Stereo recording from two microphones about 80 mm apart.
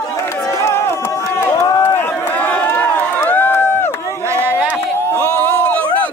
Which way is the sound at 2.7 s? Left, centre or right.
Left.